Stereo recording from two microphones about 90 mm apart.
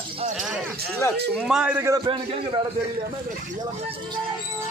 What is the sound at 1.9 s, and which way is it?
Speech, 60° right (ahead or behind).